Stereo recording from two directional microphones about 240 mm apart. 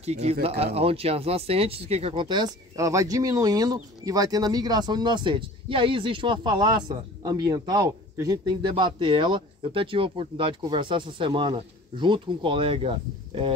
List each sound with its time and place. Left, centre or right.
0.0 s speech: right